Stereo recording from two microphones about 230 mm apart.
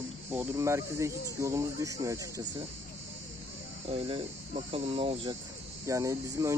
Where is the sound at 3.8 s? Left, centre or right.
Right.